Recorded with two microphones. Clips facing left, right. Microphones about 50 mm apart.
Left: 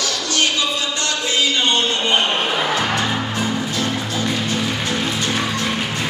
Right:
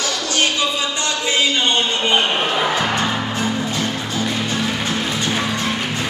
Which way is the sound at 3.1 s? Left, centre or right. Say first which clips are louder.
Even; centre.